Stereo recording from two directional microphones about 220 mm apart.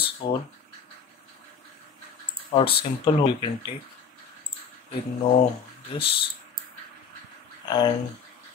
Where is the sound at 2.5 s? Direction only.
25° left (ahead or behind).